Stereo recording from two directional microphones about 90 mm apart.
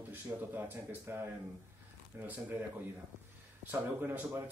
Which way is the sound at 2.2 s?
20° right (ahead or behind).